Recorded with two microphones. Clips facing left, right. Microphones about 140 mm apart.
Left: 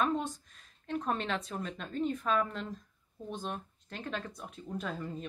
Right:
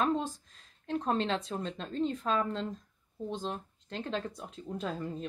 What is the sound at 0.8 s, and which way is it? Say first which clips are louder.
Speech: right 3 dB; 30° right (ahead or behind).